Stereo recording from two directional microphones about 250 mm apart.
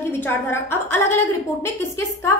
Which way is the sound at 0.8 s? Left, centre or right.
Left.